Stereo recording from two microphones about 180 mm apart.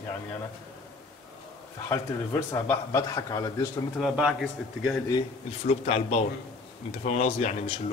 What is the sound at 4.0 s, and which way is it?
Speech, centre (ahead or behind).